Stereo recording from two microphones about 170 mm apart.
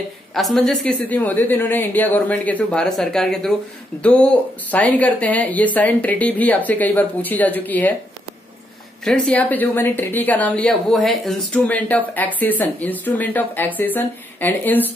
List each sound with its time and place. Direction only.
0.3 s speech: centre (ahead or behind)
9.0 s speech: 5° left (ahead or behind)